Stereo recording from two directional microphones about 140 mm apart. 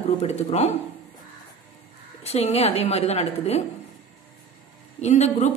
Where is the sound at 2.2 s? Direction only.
50° left (ahead or behind).